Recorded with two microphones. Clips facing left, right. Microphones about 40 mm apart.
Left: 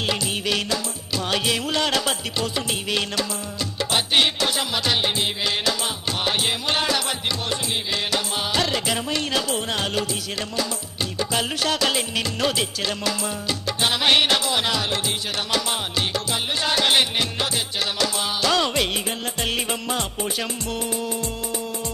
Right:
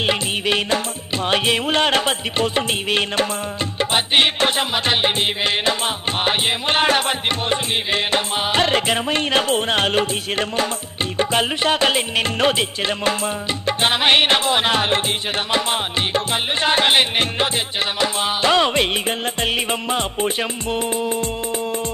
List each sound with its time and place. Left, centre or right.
0.0 s music: right
11.1 s music: right
16.6 s music: right